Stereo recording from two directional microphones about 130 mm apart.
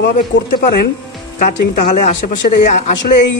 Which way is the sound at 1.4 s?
80° left.